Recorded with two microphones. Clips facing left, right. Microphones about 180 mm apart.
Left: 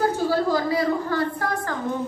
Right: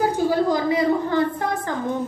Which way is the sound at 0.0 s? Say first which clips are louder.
Right 2 dB; 15° right (ahead or behind).